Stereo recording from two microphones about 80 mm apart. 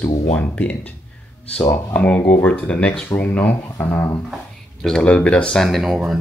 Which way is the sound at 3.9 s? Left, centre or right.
Left.